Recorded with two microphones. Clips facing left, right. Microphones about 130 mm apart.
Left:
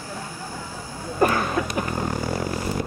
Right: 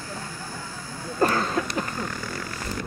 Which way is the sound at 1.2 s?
15° left (ahead or behind).